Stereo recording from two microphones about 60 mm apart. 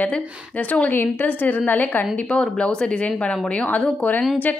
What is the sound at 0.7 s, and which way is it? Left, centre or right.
A woman's voice, left.